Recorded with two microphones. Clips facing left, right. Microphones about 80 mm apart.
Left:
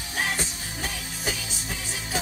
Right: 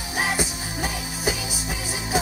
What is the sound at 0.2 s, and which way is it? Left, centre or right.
Music, centre.